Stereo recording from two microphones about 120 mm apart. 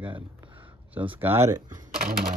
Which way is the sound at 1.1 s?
20° right (ahead or behind).